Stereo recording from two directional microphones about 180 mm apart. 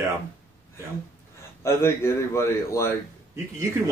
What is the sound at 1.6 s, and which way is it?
A man's voice, 15° left (ahead or behind).